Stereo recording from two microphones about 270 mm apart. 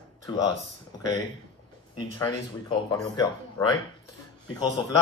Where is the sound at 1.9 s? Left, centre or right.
Centre.